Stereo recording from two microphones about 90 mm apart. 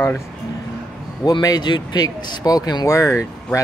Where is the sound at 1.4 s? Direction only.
50° left (ahead or behind); by 3.6 s 35° left (ahead or behind).